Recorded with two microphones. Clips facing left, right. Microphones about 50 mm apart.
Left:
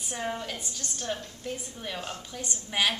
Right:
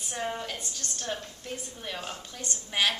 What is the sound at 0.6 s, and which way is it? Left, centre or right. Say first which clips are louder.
Speech: even; centre.